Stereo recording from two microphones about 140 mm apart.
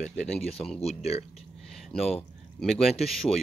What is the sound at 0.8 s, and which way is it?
Speech, 45° left (ahead or behind).